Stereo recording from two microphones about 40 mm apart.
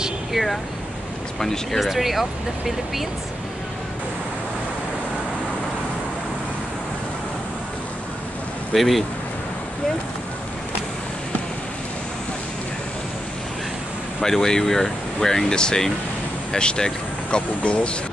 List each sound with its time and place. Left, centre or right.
0.3 s speech: centre
1.8 s speech: centre
8.7 s speech: centre
14.2 s speech: centre